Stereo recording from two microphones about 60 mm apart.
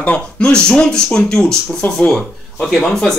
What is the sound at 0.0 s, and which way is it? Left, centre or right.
Speech, left.